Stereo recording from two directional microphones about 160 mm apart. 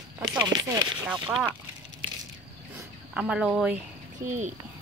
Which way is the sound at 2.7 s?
5° right (ahead or behind).